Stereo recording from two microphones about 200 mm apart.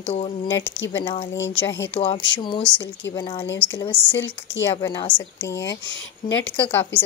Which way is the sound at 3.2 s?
25° left (ahead or behind).